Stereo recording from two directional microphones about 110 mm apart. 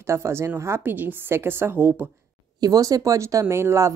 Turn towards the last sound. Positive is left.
turn(degrees=-25)  # may be behind; listen again after turning